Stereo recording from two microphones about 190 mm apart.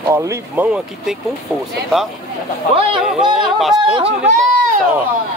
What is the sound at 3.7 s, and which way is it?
Speech, 25° right (ahead or behind).